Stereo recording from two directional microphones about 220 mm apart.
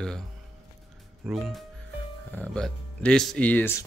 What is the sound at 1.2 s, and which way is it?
Speech, centre (ahead or behind).